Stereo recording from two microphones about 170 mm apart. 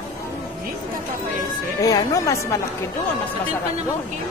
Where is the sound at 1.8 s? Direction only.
20° left (ahead or behind).